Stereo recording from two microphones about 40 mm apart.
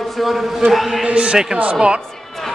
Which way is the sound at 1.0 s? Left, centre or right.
Right.